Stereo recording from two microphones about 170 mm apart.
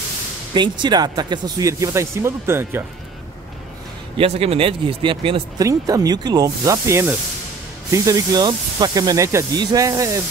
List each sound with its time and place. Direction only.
0.6 s speech: 25° right (ahead or behind)
4.2 s speech: 35° right (ahead or behind)
5.6 s speech: 20° right (ahead or behind)